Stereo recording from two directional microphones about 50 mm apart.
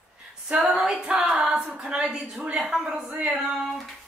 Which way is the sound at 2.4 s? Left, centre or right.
Right.